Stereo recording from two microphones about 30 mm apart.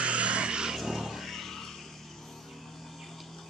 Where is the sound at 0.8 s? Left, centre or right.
Centre.